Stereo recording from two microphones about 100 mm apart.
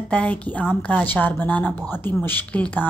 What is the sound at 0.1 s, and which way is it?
A woman's voice, 15° left (ahead or behind).